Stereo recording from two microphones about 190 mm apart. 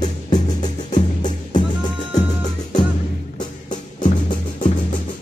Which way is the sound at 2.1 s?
20° left (ahead or behind).